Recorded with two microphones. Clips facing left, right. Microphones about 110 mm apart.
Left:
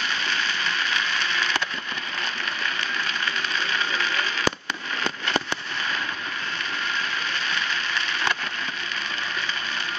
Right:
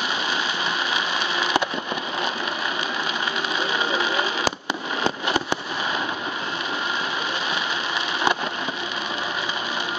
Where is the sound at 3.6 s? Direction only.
15° right (ahead or behind).